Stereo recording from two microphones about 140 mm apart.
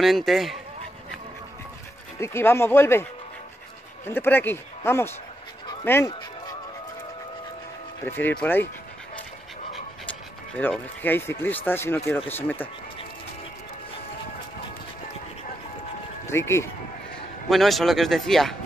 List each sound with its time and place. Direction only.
0.0 s speech: centre (ahead or behind)
2.1 s a man's voice: 20° left (ahead or behind)
4.1 s a man's voice: 15° left (ahead or behind)
8.0 s a man's voice: 15° left (ahead or behind)
10.0 s a man's voice: 10° left (ahead or behind)
16.3 s speech: 20° left (ahead or behind)
17.5 s speech: centre (ahead or behind)